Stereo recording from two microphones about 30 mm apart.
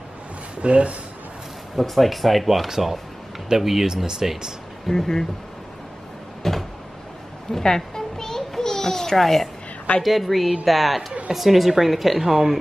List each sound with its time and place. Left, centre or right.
0.6 s speech: right
1.8 s speech: centre
3.4 s speech: centre
4.8 s speech: centre
6.4 s a sound: centre
7.6 s a sound: centre
9.1 s speech: centre